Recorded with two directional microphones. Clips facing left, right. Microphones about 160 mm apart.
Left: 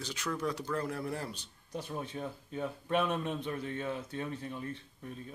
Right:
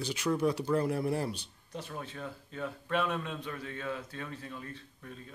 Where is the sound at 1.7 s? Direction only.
15° left (ahead or behind).